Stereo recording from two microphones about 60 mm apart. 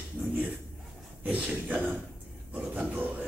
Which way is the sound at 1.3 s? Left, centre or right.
Right.